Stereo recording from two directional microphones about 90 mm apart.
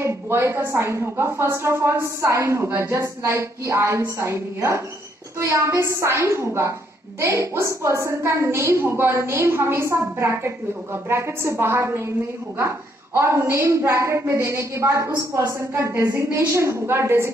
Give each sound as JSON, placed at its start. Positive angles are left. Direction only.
{"t": 0.0, "sound": "a woman's voice", "side_deg": -25}